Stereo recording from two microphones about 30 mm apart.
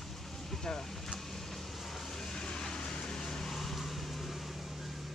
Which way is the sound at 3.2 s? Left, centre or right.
Centre.